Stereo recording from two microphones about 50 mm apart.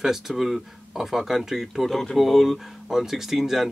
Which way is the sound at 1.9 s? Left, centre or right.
Centre.